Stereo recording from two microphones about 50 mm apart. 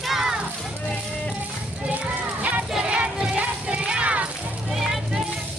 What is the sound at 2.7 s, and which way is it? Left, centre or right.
Music, right.